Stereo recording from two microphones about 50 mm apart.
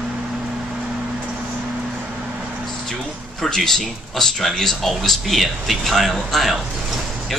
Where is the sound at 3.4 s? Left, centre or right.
Centre.